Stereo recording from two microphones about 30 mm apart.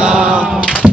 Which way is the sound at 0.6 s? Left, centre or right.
Right.